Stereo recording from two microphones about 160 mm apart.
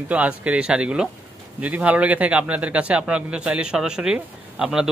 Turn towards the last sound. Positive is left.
turn(degrees=-5)  # may be behind; listen again after turning